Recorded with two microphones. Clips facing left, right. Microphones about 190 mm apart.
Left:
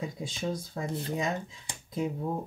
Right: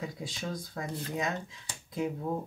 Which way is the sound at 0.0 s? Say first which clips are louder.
Left 4 dB; 25° left (ahead or behind).